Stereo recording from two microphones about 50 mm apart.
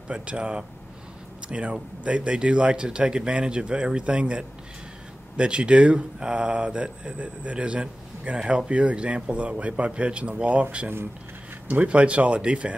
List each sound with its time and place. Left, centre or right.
0.1 s speech: right